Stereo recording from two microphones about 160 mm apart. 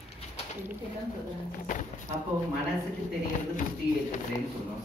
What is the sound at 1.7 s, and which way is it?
Speech, 55° left (ahead or behind).